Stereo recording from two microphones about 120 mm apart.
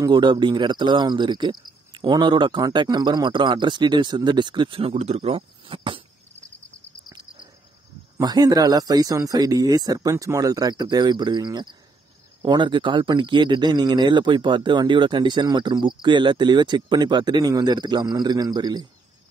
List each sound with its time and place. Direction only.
0.0 s a man's voice: 40° right (ahead or behind)
8.2 s a man's voice: 30° right (ahead or behind)